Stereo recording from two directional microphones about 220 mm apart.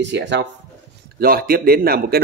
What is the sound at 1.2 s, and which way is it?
Speech, 40° right (ahead or behind).